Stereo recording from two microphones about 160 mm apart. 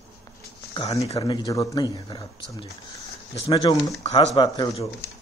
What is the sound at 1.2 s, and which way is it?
Speech, 25° left (ahead or behind).